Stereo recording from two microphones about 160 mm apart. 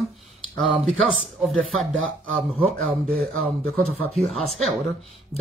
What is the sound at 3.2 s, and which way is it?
Speech, 40° right (ahead or behind).